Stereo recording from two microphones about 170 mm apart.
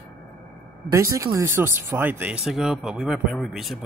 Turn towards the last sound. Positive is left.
turn(degrees=0)  # may be behind; listen again after turning